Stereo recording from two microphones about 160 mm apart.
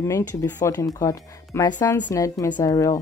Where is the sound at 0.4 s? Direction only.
20° left (ahead or behind).